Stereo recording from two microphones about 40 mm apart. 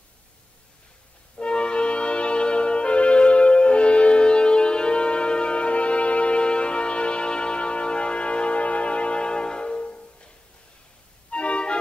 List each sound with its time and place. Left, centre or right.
1.4 s music: left